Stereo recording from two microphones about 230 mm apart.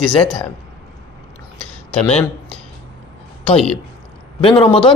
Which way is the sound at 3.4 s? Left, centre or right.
Centre.